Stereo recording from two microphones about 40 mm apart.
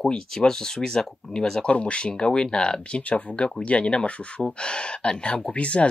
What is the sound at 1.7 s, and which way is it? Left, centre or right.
Speech, left.